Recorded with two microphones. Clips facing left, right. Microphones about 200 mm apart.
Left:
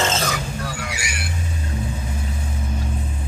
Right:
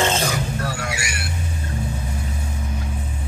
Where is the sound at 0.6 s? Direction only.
65° right (ahead or behind).